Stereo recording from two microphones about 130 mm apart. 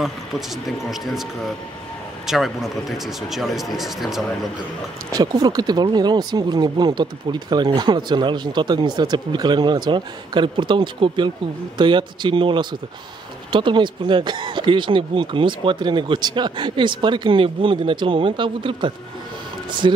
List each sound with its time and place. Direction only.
0.0 s speech: centre (ahead or behind)
5.1 s speech: 30° right (ahead or behind)